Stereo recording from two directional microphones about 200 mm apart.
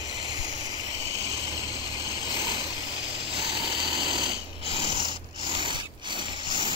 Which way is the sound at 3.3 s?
25° left (ahead or behind).